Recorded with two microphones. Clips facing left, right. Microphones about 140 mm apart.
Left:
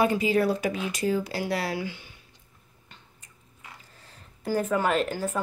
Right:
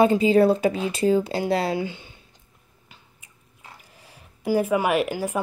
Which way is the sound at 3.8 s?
10° right (ahead or behind).